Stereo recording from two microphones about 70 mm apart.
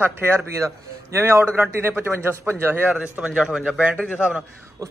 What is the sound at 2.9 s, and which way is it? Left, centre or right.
Speech, centre.